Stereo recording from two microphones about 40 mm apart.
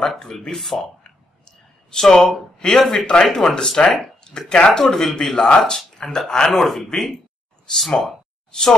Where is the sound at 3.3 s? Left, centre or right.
Centre.